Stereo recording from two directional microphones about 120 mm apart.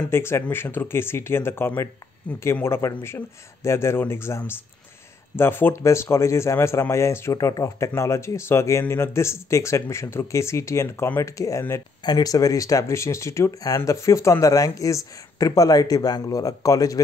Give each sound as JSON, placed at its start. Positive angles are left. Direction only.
{"t": 0.1, "sound": "speech", "side_deg": 20}